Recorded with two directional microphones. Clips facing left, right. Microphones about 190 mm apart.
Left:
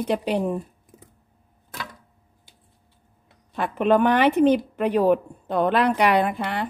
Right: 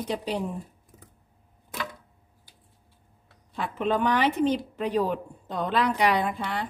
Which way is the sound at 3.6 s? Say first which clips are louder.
Left 7 dB; 60° left (ahead or behind).